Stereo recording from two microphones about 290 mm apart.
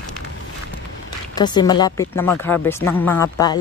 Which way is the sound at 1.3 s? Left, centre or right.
Centre.